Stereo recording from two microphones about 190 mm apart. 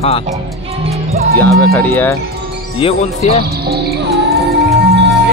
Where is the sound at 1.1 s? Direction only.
55° right (ahead or behind).